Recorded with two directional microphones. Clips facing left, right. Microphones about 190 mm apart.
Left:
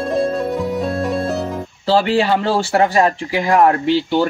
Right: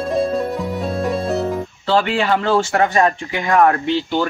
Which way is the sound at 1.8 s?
30° left (ahead or behind).